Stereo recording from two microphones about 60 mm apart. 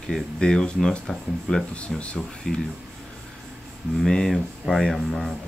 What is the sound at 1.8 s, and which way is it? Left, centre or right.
Speech, centre.